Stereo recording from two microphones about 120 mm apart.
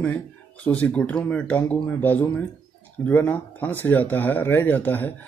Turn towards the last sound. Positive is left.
turn(degrees=15)  # may be behind; listen again after turning